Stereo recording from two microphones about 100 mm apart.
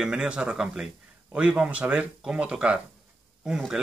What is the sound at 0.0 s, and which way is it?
Speech, 10° right (ahead or behind).